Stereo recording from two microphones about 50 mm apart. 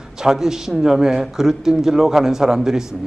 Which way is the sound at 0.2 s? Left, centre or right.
Centre.